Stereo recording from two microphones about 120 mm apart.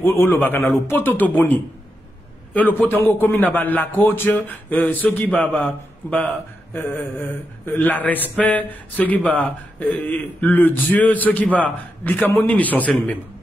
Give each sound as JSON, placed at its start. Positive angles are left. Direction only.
{"t": 0.0, "sound": "a man's voice", "side_deg": 20}
{"t": 2.5, "sound": "a man's voice", "side_deg": 15}